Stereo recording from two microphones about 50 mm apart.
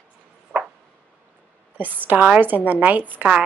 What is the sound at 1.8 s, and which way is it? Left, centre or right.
Speech, right.